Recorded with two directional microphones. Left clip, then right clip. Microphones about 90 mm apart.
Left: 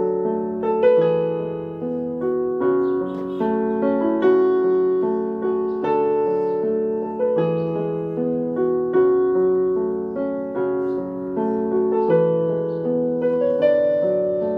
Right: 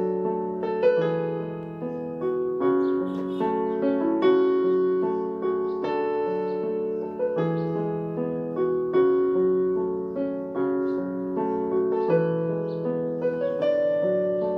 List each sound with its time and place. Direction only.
0.7 s music: 20° right (ahead or behind)
2.6 s music: 20° right (ahead or behind)
8.9 s music: 25° right (ahead or behind)
11.9 s music: 25° right (ahead or behind)